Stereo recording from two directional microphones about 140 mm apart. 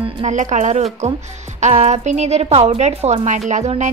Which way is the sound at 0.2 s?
60° right (ahead or behind).